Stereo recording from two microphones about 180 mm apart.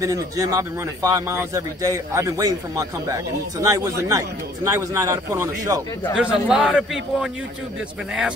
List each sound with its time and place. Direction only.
0.0 s a man's voice: 20° right (ahead or behind)
6.1 s a man's voice: 5° right (ahead or behind)